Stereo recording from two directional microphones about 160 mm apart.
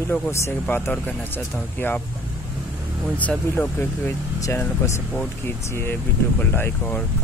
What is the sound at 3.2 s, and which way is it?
Speech, 10° left (ahead or behind).